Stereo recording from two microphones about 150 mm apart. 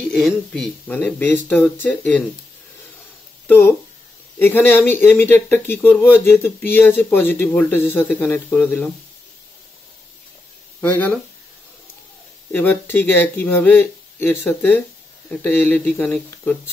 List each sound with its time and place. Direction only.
0.0 s speech: centre (ahead or behind)
0.9 s speech: 10° left (ahead or behind)
3.4 s speech: 15° left (ahead or behind)
10.8 s speech: 10° left (ahead or behind)
12.5 s speech: 15° left (ahead or behind)